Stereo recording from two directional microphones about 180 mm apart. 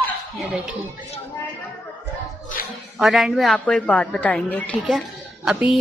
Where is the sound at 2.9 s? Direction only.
Centre (ahead or behind).